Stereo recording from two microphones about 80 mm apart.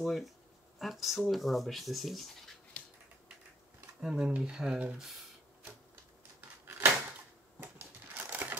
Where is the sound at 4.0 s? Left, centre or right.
Centre.